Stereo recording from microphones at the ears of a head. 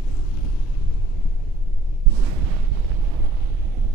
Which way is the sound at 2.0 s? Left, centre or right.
Right.